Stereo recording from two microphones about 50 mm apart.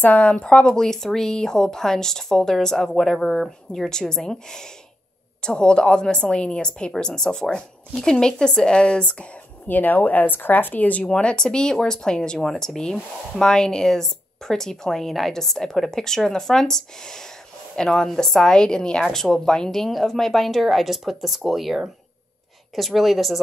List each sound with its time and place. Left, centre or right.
0.0 s speech: left
0.7 s speech: centre
9.7 s speech: left
11.1 s a woman's voice: centre